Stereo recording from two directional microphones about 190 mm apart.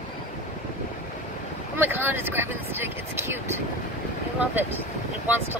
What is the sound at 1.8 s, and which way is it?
Speech, 10° right (ahead or behind).